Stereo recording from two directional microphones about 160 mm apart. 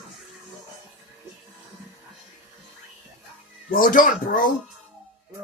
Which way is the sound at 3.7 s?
60° left (ahead or behind).